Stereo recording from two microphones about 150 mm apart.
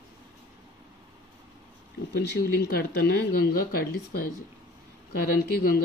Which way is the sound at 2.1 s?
90° left.